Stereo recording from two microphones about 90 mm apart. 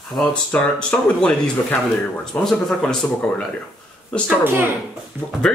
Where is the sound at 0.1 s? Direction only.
Centre (ahead or behind).